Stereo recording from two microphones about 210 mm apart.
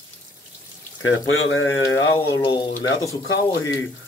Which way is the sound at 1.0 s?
70° left (ahead or behind).